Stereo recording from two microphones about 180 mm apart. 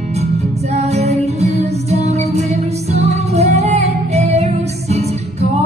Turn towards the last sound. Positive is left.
turn(degrees=-35)  # may be behind; listen again after turning